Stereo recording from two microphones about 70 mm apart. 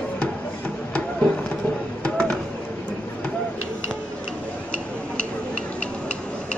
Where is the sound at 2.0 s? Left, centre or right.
Centre.